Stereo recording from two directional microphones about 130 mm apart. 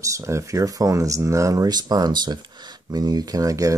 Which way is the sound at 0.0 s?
25° right (ahead or behind).